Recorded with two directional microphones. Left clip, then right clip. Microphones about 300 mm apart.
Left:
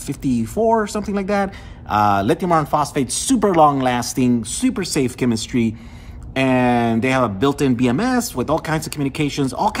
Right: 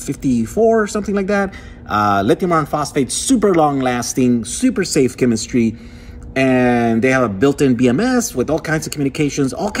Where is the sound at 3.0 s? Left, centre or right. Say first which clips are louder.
Right 3 dB; centre.